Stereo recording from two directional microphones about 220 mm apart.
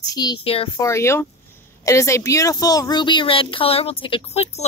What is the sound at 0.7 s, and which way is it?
A woman's voice, 15° left (ahead or behind).